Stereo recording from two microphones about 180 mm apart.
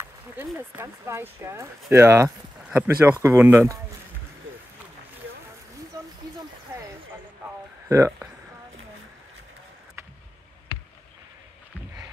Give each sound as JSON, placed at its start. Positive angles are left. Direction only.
{"t": 0.6, "sound": "speech", "side_deg": -15}
{"t": 5.9, "sound": "a sound", "side_deg": -20}
{"t": 7.9, "sound": "speech", "side_deg": -15}